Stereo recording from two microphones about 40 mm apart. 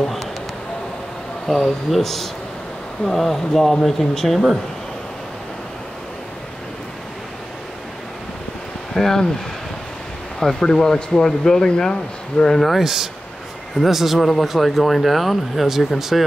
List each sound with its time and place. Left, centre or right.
1.5 s speech: centre
8.9 s speech: centre
10.4 s speech: centre
12.4 s speech: centre
12.8 s speech: centre